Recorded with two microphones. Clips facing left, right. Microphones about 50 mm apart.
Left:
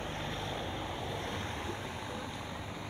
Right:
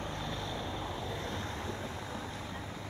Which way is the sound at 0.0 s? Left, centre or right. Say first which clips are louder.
Even; left.